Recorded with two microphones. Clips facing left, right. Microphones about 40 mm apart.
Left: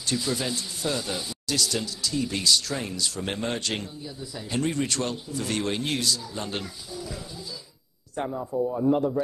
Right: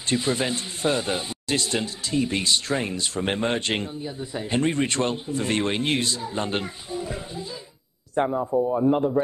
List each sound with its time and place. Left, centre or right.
0.1 s a man's voice: right